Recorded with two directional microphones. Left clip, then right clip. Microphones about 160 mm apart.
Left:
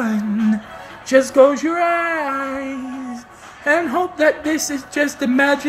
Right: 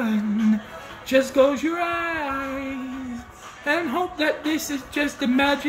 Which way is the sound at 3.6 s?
10° right (ahead or behind).